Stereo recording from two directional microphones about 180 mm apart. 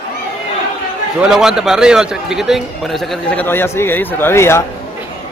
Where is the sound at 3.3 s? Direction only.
10° left (ahead or behind).